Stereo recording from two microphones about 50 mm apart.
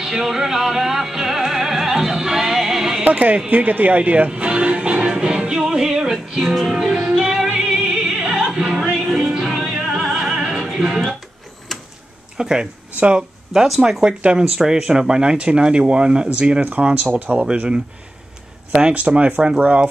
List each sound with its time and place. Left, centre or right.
0.0 s music: centre
3.0 s speech: right
4.3 s music: centre
6.5 s music: centre
11.7 s a sound: centre
12.4 s speech: centre
17.0 s speech: right
17.4 s speech: right
18.9 s speech: right